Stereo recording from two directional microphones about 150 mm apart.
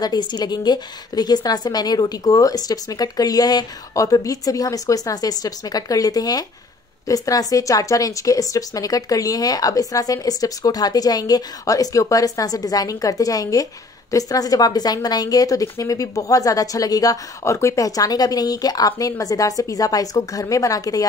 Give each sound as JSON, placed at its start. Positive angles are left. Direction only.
{"t": 0.0, "sound": "a woman's voice", "side_deg": 30}